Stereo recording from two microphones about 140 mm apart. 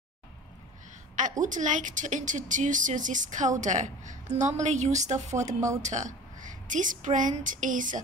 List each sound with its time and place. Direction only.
1.4 s speech: 65° right (ahead or behind)
5.5 s speech: 25° right (ahead or behind)
5.8 s a woman's voice: 60° right (ahead or behind)